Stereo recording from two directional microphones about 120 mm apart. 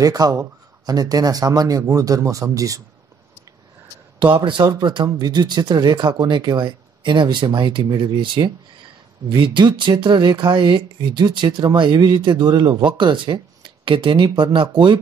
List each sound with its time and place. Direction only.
0.0 s speech: 30° right (ahead or behind)
4.2 s speech: 45° right (ahead or behind)